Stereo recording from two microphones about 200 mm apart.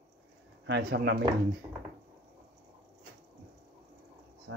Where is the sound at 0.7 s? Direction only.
60° right (ahead or behind).